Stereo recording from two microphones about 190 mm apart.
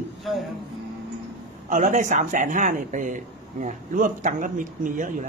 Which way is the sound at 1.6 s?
40° right (ahead or behind).